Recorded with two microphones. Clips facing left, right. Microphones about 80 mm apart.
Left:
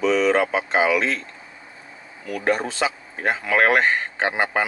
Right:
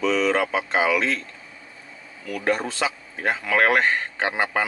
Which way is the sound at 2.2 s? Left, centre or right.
Left.